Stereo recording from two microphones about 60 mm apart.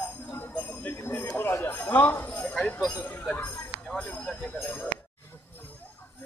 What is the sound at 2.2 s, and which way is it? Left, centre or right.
Jingle bell, left.